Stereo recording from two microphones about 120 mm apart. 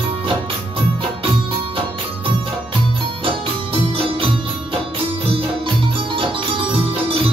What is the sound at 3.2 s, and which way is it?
Music, 45° right (ahead or behind).